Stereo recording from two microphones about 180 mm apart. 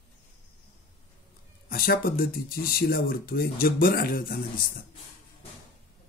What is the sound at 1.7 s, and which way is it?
Speech, 55° left (ahead or behind).